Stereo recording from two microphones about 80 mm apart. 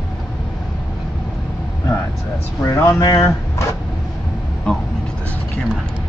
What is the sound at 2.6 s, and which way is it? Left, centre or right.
Speech, left.